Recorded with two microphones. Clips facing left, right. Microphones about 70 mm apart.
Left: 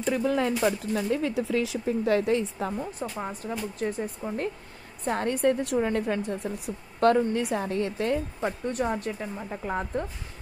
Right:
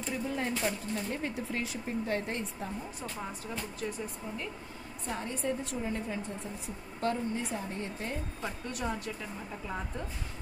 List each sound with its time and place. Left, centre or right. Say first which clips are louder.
0.0 s speech: left 9 dB; left
3.0 s speech: left 6 dB; left
5.0 s a woman's voice: left 10 dB; left
8.4 s speech: left 9 dB; left